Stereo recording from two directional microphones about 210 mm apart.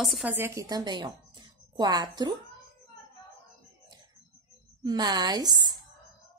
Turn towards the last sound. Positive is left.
turn(degrees=-20)  # may be behind; listen again after turning